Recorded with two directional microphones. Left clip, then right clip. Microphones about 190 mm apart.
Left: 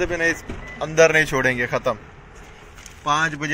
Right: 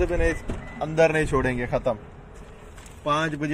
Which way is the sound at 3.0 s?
5° right (ahead or behind).